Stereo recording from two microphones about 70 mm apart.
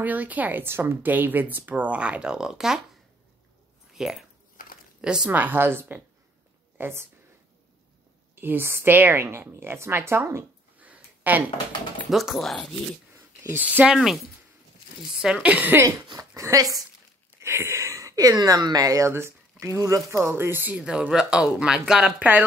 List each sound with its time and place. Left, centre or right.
0.0 s speech: right; by 2.8 s centre
3.9 s speech: centre
5.3 s speech: right
8.4 s a woman's voice: right
10.8 s a sound: right
12.1 s speech: centre
13.5 s speech: right
13.8 s speech: centre
15.2 s speech: centre
15.5 s speech: right
16.0 s speech: right
17.4 s speech: right
19.0 s a woman's voice: right
20.7 s speech: centre